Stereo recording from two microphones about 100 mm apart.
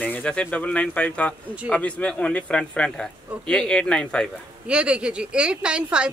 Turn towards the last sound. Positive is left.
turn(degrees=-10)  # may be behind; listen again after turning